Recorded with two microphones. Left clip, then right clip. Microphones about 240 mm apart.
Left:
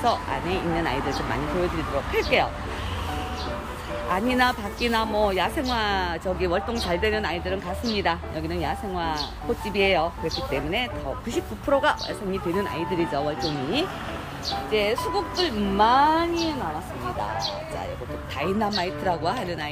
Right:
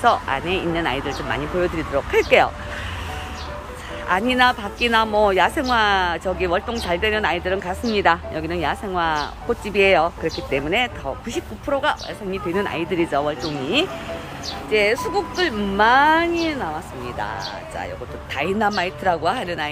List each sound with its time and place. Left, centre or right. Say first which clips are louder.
0.0 s speech: right 6 dB; centre
4.1 s speech: right 6 dB; centre
11.3 s speech: left 2 dB; centre
18.3 s speech: right 5 dB; centre